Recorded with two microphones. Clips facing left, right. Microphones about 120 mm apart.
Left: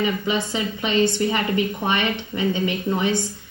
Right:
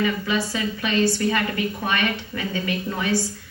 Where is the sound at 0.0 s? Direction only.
20° left (ahead or behind).